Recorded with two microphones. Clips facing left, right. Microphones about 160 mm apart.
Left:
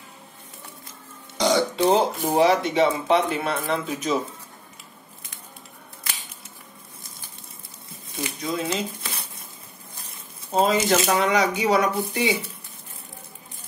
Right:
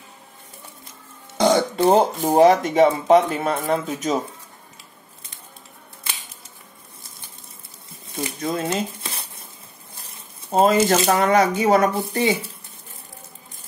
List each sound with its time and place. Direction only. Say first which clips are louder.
1.4 s speech: right 3 dB; 50° right (ahead or behind)
8.4 s speech: right 3 dB; 55° right (ahead or behind)
10.6 s speech: right 4 dB; 55° right (ahead or behind)